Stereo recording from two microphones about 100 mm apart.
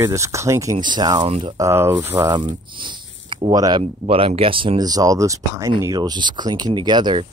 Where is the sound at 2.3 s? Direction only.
50° right (ahead or behind).